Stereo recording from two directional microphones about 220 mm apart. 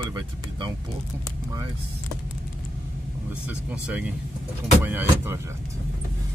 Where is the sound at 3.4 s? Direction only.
5° right (ahead or behind).